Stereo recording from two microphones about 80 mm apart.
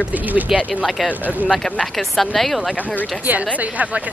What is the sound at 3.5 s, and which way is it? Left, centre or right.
Speech, centre.